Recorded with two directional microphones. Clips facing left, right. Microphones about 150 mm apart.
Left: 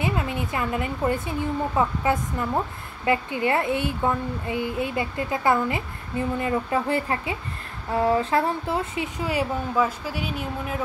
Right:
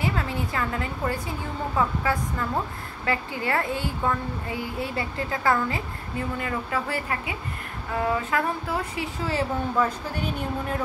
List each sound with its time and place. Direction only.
0.0 s a woman's voice: 20° left (ahead or behind)